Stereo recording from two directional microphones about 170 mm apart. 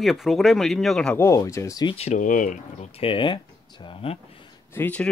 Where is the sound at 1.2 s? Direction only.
15° left (ahead or behind).